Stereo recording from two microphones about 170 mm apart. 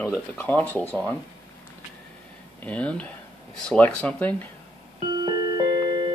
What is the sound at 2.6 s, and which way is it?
Speech, 5° left (ahead or behind).